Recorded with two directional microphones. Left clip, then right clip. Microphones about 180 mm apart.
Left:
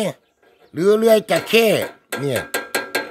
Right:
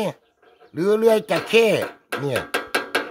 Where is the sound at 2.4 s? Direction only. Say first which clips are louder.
Even; 20° right (ahead or behind).